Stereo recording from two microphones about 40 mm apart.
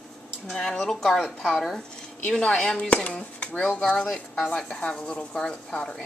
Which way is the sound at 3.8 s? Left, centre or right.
Left.